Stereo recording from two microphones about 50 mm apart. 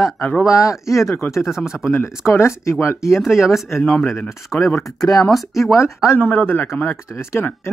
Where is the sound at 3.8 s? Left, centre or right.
Centre.